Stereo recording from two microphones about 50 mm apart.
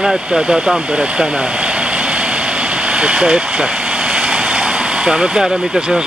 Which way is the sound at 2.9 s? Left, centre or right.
Centre.